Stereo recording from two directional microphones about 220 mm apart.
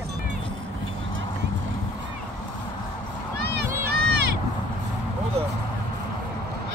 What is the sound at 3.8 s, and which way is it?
Crowd, 45° right (ahead or behind).